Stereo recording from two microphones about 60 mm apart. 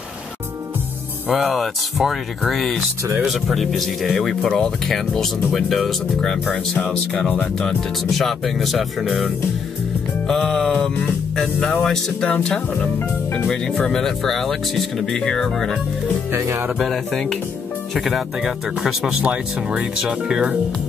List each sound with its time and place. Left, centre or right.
1.3 s speech: centre
10.2 s speech: centre
13.5 s speech: centre
16.3 s speech: right
16.6 s speech: centre
19.2 s speech: centre